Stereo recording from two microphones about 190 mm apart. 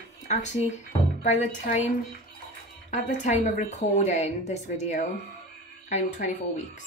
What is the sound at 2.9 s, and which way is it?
Speech, 40° left (ahead or behind).